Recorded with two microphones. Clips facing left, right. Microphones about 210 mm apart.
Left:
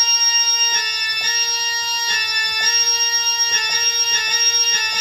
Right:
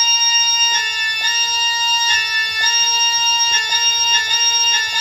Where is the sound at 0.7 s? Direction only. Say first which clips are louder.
Right 3 dB; 45° left (ahead or behind).